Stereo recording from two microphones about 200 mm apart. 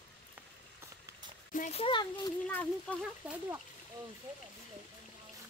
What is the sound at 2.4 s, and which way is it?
Speech, 10° left (ahead or behind).